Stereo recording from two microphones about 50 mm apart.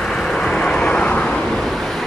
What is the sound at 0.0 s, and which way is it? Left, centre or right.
Vehicle, centre.